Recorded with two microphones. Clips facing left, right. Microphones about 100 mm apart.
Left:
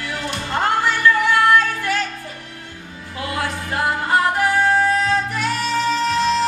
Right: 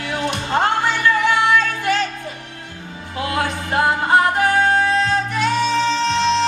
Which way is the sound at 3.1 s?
20° right (ahead or behind).